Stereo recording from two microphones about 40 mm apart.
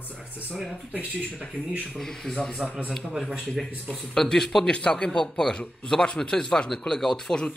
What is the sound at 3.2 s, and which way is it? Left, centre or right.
Speech, centre.